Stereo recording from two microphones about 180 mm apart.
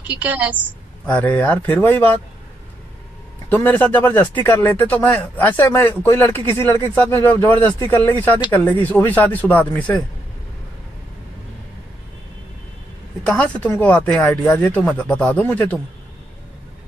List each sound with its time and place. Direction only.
0.2 s a woman's voice: 10° right (ahead or behind)
1.0 s speech: 10° left (ahead or behind)
3.4 s speech: 10° left (ahead or behind)
13.3 s speech: 10° left (ahead or behind)